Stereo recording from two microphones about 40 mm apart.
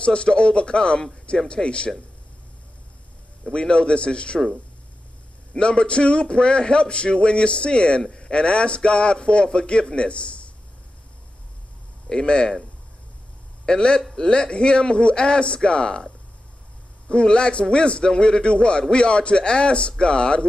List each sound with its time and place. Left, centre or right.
0.0 s a man's voice: left
3.4 s a man's voice: left
5.5 s a man's voice: left
12.1 s a man's voice: centre
13.7 s a man's voice: left
17.1 s a man's voice: left